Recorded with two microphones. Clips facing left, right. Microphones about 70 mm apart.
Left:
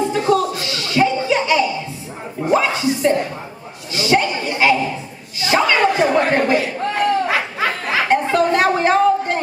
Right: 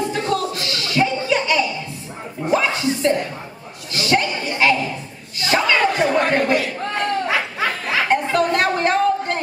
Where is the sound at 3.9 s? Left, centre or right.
Centre.